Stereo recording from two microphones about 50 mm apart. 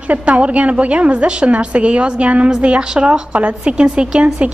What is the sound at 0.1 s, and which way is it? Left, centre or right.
A woman's voice, right.